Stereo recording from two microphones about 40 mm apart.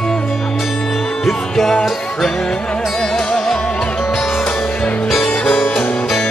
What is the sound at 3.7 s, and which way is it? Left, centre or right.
Music, left.